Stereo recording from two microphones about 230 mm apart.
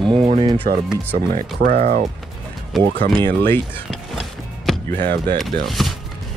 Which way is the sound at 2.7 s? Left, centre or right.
Centre.